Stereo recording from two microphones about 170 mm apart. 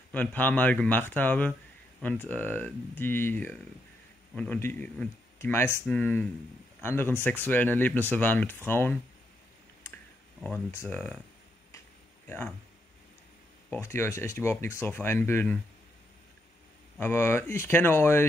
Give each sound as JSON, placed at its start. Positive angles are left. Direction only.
{"t": 0.1, "sound": "speech", "side_deg": 10}
{"t": 10.4, "sound": "speech", "side_deg": 10}
{"t": 12.3, "sound": "speech", "side_deg": 10}
{"t": 13.7, "sound": "speech", "side_deg": 15}
{"t": 17.0, "sound": "speech", "side_deg": 15}